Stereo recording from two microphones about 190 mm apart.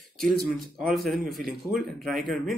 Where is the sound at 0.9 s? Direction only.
Centre (ahead or behind).